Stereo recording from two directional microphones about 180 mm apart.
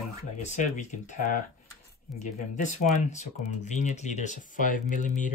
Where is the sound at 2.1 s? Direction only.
Centre (ahead or behind).